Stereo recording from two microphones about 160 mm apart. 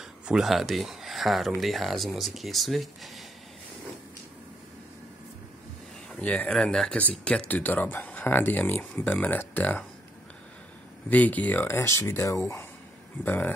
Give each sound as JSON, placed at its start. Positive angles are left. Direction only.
{"t": 0.0, "sound": "speech", "side_deg": -5}
{"t": 6.0, "sound": "speech", "side_deg": 5}
{"t": 11.1, "sound": "speech", "side_deg": 10}